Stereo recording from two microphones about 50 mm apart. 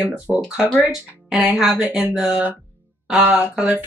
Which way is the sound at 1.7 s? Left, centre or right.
Right.